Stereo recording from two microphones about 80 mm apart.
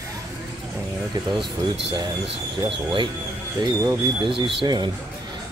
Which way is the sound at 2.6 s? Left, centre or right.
Right.